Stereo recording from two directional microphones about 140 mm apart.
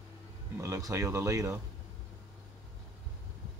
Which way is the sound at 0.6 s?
20° right (ahead or behind).